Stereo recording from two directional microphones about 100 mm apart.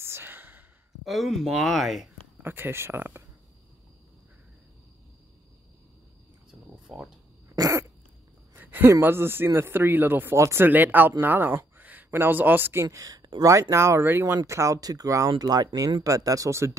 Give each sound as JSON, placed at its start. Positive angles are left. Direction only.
{"t": 0.0, "sound": "sigh", "side_deg": -25}
{"t": 1.0, "sound": "speech", "side_deg": 0}
{"t": 2.4, "sound": "speech", "side_deg": -20}
{"t": 6.9, "sound": "speech", "side_deg": -5}
{"t": 7.4, "sound": "dog", "side_deg": -35}
{"t": 8.5, "sound": "a sound", "side_deg": -20}
{"t": 9.0, "sound": "speech", "side_deg": -25}
{"t": 12.8, "sound": "speech", "side_deg": -35}